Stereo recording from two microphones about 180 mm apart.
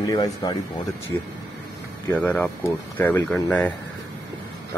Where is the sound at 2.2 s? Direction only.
10° left (ahead or behind).